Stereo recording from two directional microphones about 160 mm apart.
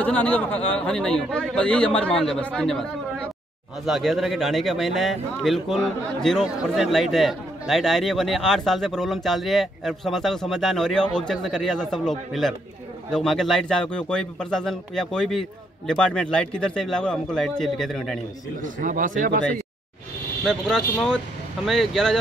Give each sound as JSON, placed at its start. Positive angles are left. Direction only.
{"t": 0.0, "sound": "a man's voice", "side_deg": 10}
{"t": 18.6, "sound": "speech", "side_deg": -55}
{"t": 20.4, "sound": "speech", "side_deg": 5}